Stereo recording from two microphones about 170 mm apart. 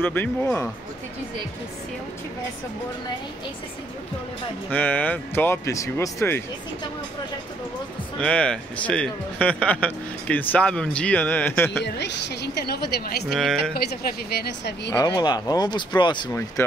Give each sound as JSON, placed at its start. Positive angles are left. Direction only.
{"t": 0.0, "sound": "a man's voice", "side_deg": 10}
{"t": 4.6, "sound": "a man's voice", "side_deg": 10}
{"t": 8.2, "sound": "a man's voice", "side_deg": 5}
{"t": 11.8, "sound": "a woman's voice", "side_deg": 85}
{"t": 13.3, "sound": "speech", "side_deg": 0}
{"t": 13.7, "sound": "a woman's voice", "side_deg": 65}
{"t": 14.9, "sound": "speech", "side_deg": 25}
{"t": 16.6, "sound": "speech", "side_deg": 15}